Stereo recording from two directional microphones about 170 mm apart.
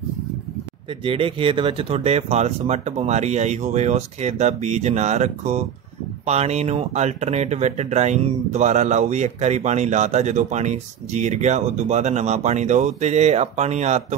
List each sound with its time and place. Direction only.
0.8 s speech: 30° right (ahead or behind)